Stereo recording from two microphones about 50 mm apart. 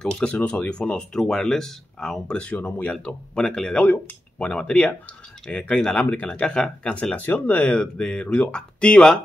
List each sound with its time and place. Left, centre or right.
0.0 s speech: centre
0.9 s speech: centre
2.3 s speech: left
3.7 s speech: left
7.2 s speech: left
7.5 s speech: left